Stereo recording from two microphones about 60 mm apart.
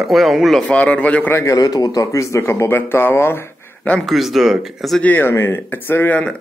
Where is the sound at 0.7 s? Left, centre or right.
Centre.